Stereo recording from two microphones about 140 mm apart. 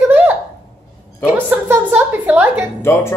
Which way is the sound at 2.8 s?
15° left (ahead or behind).